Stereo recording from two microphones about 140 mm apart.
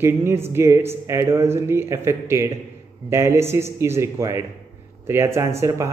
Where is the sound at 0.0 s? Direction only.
20° right (ahead or behind).